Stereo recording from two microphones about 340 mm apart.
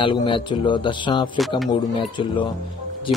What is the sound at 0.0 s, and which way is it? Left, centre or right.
A man's voice, centre.